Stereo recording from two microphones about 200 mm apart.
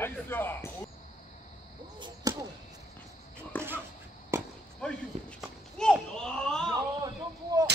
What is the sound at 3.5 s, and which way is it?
Dog, 10° left (ahead or behind).